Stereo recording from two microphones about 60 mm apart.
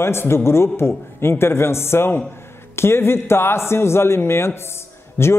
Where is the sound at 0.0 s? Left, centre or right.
Left.